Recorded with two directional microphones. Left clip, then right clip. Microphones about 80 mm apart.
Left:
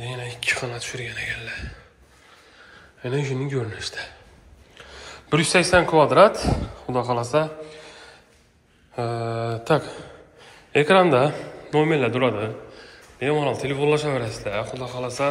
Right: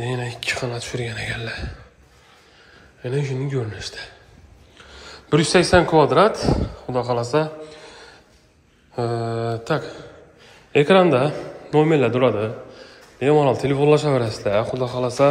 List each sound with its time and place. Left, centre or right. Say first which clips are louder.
0.4 s speech: left 3 dB; right
2.7 s a sound: right 1 dB; centre
3.6 s speech: left 1 dB; right
4.7 s a sound: left 1 dB; centre
5.3 s speech: right 2 dB; right
6.0 s a man's voice: left 1 dB; right
9.7 s a man's voice: left 6 dB; centre
10.7 s a man's voice: right 2 dB; right
11.1 s a man's voice: even; centre
11.7 s a man's voice: right 3 dB; right
13.3 s speech: right 6 dB; right
14.6 s speech: right 6 dB; right